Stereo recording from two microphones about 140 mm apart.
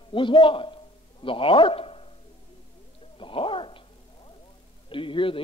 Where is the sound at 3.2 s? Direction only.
40° left (ahead or behind).